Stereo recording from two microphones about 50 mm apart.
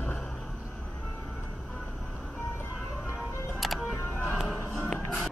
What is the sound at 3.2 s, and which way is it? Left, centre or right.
Music, centre.